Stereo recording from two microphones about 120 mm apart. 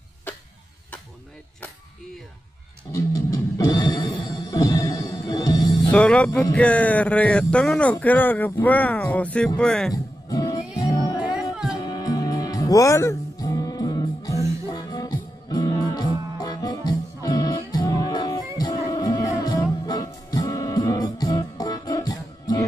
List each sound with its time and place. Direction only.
2.9 s music: 30° left (ahead or behind)
5.9 s speech: 10° left (ahead or behind)
10.3 s music: 30° left (ahead or behind)
11.8 s music: 35° left (ahead or behind)